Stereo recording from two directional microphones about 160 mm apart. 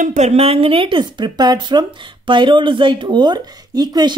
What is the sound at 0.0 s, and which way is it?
A woman's voice, 50° right (ahead or behind).